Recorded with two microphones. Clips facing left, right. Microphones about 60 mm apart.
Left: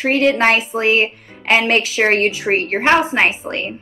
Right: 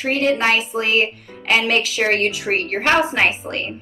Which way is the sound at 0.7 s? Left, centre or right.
Left.